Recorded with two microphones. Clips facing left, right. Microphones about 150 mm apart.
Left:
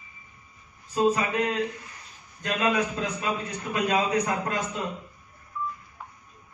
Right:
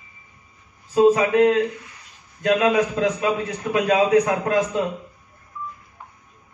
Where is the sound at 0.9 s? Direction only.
90° right.